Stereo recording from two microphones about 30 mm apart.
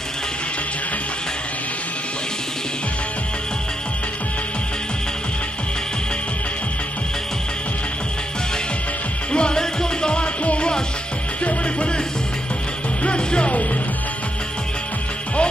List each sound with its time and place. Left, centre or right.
9.3 s music: left
9.6 s music: left
10.1 s music: left
13.0 s music: left